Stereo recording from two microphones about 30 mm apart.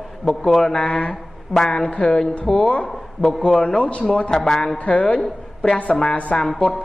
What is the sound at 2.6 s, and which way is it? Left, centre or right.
Speech, left.